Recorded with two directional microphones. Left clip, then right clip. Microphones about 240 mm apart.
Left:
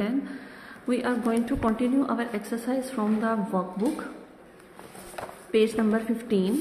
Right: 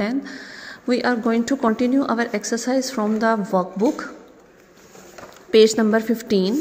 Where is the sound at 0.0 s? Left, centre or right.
Right.